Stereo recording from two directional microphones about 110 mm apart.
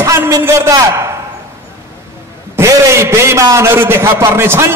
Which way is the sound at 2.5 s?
25° right (ahead or behind).